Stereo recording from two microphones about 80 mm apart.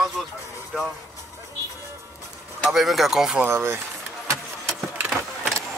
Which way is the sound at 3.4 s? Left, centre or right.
Right.